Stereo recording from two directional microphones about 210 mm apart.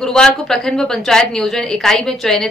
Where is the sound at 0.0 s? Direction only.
5° left (ahead or behind).